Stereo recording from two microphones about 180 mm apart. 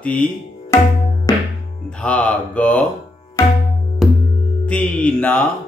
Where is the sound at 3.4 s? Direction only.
15° left (ahead or behind).